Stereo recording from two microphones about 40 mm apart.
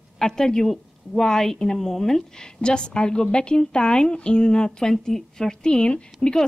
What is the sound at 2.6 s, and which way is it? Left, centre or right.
A woman's voice, left.